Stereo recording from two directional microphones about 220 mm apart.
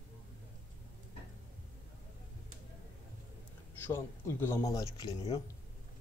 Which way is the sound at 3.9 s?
10° left (ahead or behind).